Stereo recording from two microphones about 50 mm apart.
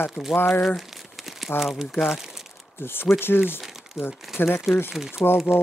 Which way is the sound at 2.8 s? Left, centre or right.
Left.